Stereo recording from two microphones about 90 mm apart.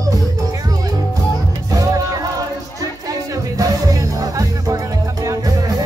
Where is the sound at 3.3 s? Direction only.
40° right (ahead or behind).